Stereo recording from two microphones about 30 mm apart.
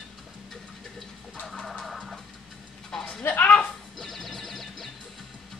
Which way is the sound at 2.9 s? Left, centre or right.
Left.